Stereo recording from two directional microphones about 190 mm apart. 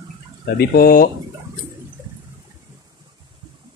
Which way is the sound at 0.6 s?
50° left (ahead or behind).